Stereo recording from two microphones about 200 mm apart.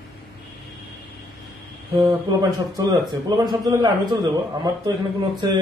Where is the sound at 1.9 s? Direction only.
15° right (ahead or behind).